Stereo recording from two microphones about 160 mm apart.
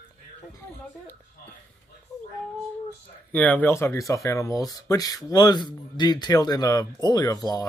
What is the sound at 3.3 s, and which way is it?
Speech, 10° left (ahead or behind).